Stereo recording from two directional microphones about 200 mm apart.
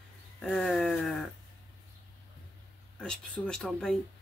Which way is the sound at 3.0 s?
5° left (ahead or behind).